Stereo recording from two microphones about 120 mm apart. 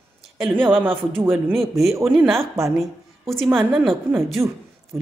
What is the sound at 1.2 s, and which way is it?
Speech, 15° right (ahead or behind).